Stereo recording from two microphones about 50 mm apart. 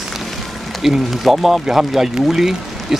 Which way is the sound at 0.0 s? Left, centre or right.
Centre.